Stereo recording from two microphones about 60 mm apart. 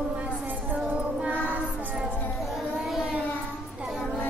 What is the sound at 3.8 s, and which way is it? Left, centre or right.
Music, centre.